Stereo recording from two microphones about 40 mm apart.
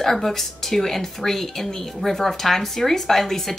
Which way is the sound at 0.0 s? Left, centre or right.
Centre.